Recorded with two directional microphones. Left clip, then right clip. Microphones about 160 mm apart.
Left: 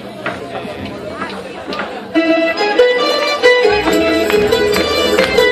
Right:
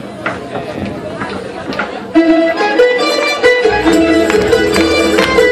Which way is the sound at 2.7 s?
25° left (ahead or behind).